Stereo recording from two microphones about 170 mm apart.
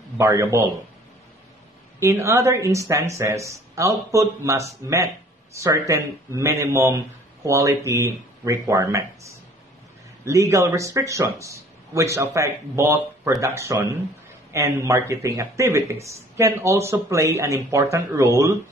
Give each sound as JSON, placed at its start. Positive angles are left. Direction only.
{"t": 0.2, "sound": "speech", "side_deg": -15}
{"t": 2.0, "sound": "speech", "side_deg": -15}